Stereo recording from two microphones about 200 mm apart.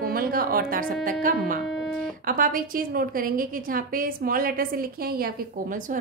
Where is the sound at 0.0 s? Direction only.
45° right (ahead or behind).